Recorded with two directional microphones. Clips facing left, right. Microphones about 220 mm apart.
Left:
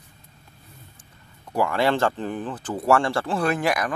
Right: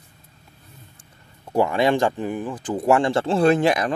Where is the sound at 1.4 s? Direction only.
25° right (ahead or behind).